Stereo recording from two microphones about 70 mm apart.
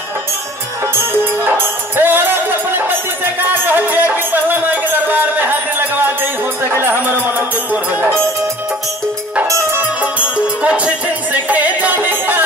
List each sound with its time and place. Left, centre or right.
0.9 s music: right
9.8 s music: right